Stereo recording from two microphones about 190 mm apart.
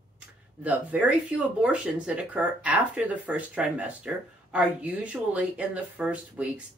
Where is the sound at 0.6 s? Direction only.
5° right (ahead or behind).